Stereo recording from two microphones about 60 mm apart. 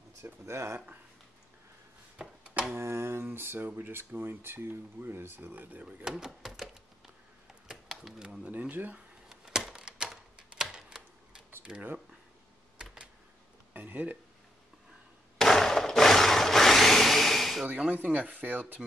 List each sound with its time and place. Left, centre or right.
0.2 s speech: right
2.1 s a sound: centre
2.7 s speech: right
6.0 s a sound: centre
8.5 s speech: right
9.3 s a sound: centre
10.3 s camera: centre
11.7 s speech: centre
13.7 s speech: right
15.3 s wood: centre
18.0 s speech: right